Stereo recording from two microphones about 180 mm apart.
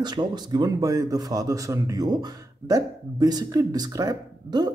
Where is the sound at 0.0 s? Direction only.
25° right (ahead or behind).